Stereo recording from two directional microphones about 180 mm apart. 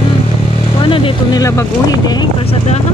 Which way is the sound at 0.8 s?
25° left (ahead or behind).